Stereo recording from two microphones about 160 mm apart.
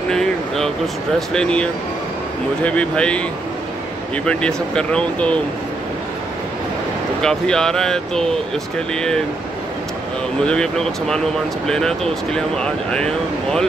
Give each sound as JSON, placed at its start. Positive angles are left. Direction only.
{"t": 0.1, "sound": "a sound", "side_deg": 5}
{"t": 1.3, "sound": "speech", "side_deg": 5}
{"t": 4.3, "sound": "speech", "side_deg": 5}
{"t": 7.2, "sound": "speech", "side_deg": 5}
{"t": 10.4, "sound": "speech", "side_deg": 5}